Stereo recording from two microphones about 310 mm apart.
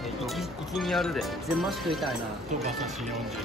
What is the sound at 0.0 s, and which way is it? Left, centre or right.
Speech, centre.